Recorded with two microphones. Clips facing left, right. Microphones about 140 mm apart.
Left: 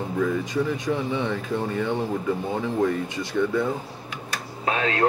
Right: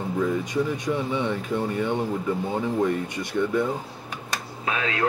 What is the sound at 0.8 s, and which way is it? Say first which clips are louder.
Speech: even; 15° right (ahead or behind).